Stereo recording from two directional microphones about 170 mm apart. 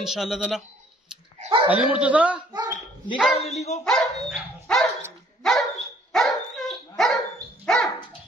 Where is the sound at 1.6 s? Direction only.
5° right (ahead or behind).